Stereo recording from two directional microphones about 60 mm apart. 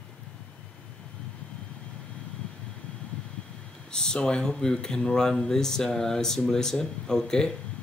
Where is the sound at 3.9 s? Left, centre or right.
Centre.